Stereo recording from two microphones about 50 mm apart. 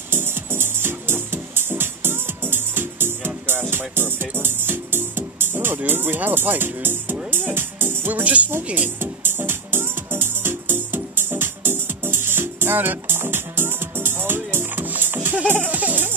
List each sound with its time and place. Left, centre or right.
0.1 s music: right
5.9 s speech: right
7.2 s music: right
8.1 s speech: right
8.7 s music: right
15.7 s music: right